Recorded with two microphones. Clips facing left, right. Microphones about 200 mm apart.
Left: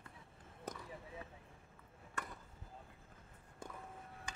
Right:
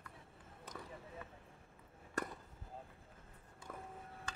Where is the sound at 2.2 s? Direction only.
35° right (ahead or behind).